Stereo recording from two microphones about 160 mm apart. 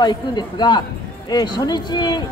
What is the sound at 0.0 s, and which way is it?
Speech, 25° left (ahead or behind).